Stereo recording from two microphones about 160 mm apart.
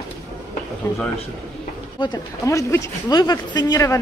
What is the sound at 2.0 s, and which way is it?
Speech, 25° left (ahead or behind).